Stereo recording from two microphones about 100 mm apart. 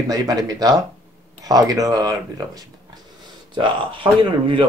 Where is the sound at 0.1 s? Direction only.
40° right (ahead or behind).